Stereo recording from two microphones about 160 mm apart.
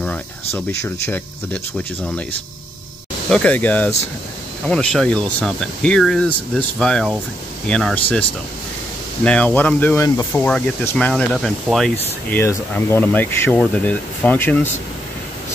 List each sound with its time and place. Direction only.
0.0 s speech: 10° left (ahead or behind)
3.3 s speech: 5° left (ahead or behind)
12.4 s speech: 15° left (ahead or behind)